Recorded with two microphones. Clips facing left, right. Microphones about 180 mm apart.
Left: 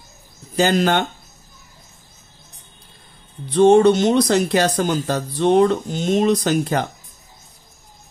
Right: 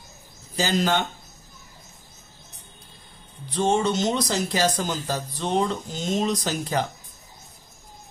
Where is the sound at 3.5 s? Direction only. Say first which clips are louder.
Left 11 dB; 60° left (ahead or behind).